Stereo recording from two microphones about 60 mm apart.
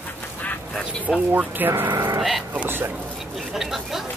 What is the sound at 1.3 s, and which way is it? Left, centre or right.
Speech, right.